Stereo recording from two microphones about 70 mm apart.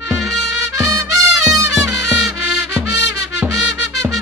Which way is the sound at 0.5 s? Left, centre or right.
Right.